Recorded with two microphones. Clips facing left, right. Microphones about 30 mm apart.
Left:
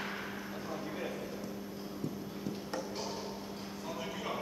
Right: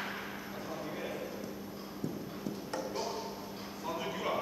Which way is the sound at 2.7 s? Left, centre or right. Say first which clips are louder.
Right 4 dB; centre.